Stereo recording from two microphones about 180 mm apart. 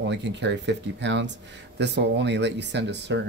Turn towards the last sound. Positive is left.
turn(degrees=-75)  # may be behind; listen again after turning